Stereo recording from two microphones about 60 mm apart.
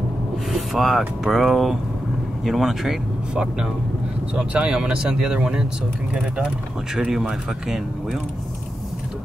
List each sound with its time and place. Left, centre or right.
0.5 s speech: centre
4.4 s speech: centre
7.1 s speech: centre